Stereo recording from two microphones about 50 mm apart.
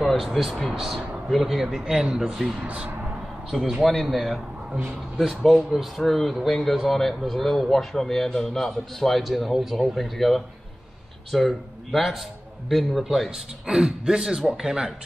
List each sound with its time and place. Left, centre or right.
0.0 s a man's voice: centre
2.6 s speech: right
3.4 s a man's voice: centre
13.3 s a man's voice: centre